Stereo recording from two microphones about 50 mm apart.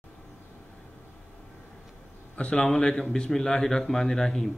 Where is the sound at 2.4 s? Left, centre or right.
Centre.